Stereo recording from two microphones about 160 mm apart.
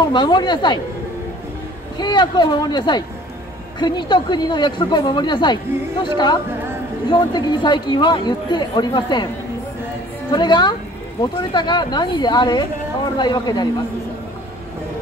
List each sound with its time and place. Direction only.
0.0 s speech: 30° left (ahead or behind)
2.0 s speech: 25° left (ahead or behind)
10.3 s speech: 25° left (ahead or behind)